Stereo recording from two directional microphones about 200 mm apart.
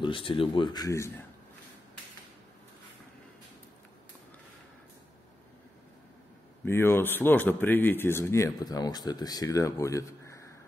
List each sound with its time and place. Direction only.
0.0 s speech: 25° left (ahead or behind)
6.6 s speech: 10° left (ahead or behind)